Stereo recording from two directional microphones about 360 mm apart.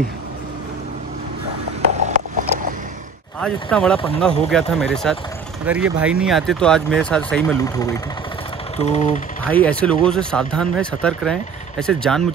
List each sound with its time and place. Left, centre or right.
2.0 s mechanisms: centre
3.3 s speech: centre
8.7 s a sound: centre
9.4 s speech: centre